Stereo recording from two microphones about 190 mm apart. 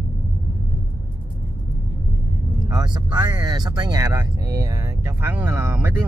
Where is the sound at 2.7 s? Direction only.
20° right (ahead or behind).